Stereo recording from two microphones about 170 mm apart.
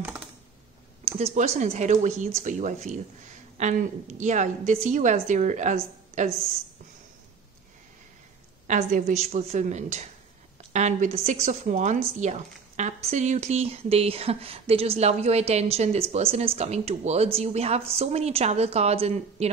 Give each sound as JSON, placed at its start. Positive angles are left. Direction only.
{"t": 1.0, "sound": "a woman's voice", "side_deg": -35}
{"t": 8.6, "sound": "a woman's voice", "side_deg": -45}